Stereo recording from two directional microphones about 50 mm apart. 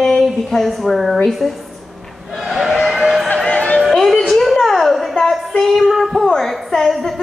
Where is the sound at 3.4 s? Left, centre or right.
Left.